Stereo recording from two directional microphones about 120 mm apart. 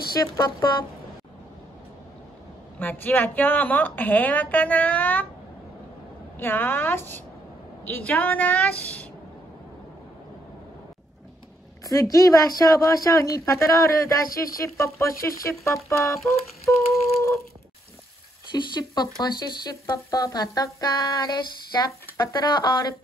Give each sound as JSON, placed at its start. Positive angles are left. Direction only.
{"t": 0.2, "sound": "speech", "side_deg": 30}
{"t": 2.8, "sound": "a woman's voice", "side_deg": 15}
{"t": 6.3, "sound": "a woman's voice", "side_deg": 15}
{"t": 11.8, "sound": "speech", "side_deg": 30}
{"t": 18.5, "sound": "speech", "side_deg": 40}